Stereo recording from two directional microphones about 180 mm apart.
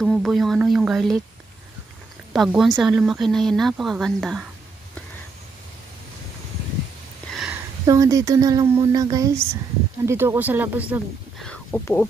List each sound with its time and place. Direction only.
0.0 s speech: centre (ahead or behind)
2.3 s speech: centre (ahead or behind)
7.3 s a sound: 5° right (ahead or behind)
7.8 s speech: 20° right (ahead or behind)
11.4 s speech: 10° left (ahead or behind)